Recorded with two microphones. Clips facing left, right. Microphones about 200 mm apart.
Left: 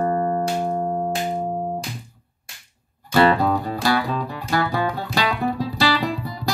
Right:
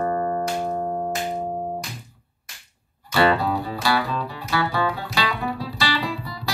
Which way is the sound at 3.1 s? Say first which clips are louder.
Left 3 dB; 50° left (ahead or behind).